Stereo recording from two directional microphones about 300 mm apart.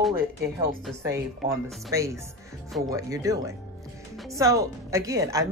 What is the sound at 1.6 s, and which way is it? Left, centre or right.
A woman's voice, centre.